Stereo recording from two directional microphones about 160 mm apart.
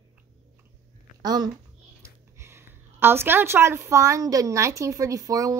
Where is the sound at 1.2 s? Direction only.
25° right (ahead or behind).